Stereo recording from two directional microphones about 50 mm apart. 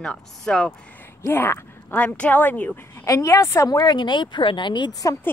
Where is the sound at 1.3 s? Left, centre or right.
Left.